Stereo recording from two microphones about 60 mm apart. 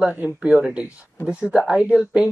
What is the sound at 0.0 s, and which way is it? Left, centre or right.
Speech, right.